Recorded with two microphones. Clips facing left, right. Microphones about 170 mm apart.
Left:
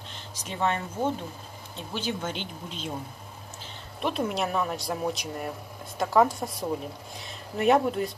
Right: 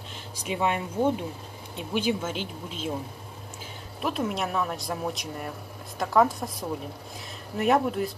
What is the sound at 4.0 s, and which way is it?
Speech, centre (ahead or behind).